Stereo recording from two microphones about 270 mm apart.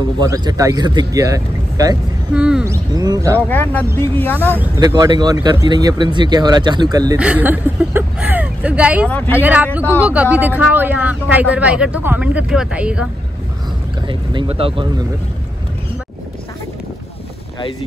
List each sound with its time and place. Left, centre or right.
0.2 s speech: centre
3.4 s speech: centre
4.6 s speech: centre
14.0 s speech: centre